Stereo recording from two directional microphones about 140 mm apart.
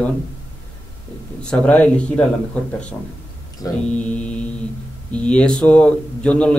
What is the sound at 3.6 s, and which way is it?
Mantra, 25° left (ahead or behind).